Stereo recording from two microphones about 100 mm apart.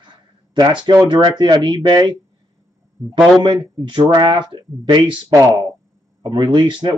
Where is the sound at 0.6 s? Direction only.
50° right (ahead or behind).